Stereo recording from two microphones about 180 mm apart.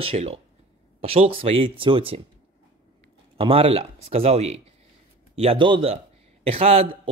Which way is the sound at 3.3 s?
30° right (ahead or behind).